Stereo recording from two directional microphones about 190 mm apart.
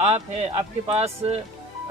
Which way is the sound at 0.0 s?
35° right (ahead or behind).